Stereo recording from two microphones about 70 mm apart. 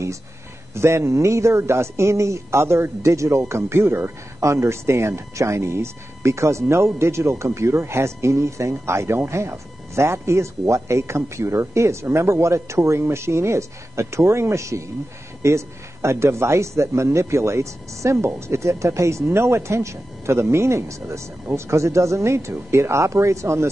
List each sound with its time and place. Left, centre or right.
0.7 s a man's voice: right